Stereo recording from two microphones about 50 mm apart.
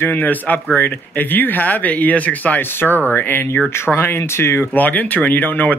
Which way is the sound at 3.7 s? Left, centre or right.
Left.